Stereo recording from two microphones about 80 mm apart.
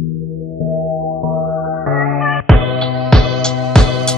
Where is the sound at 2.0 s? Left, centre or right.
Centre.